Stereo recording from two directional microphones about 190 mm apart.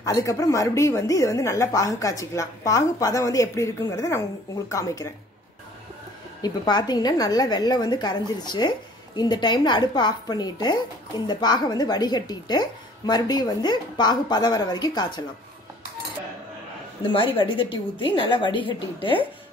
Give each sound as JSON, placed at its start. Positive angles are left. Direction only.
{"t": 0.0, "sound": "speech", "side_deg": 15}
{"t": 6.4, "sound": "a woman's voice", "side_deg": 20}
{"t": 17.1, "sound": "a woman's voice", "side_deg": 25}